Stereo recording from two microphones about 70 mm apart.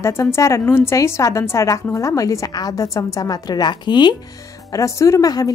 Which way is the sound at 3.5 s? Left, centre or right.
Left.